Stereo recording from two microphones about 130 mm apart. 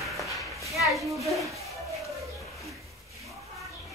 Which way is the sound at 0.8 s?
Centre (ahead or behind).